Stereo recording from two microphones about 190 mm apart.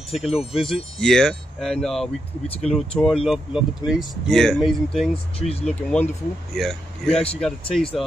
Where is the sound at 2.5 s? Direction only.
35° left (ahead or behind).